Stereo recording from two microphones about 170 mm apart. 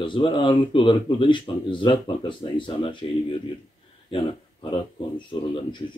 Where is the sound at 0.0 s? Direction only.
30° left (ahead or behind).